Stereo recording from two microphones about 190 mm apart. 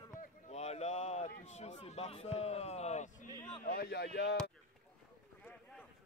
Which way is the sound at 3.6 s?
55° left (ahead or behind).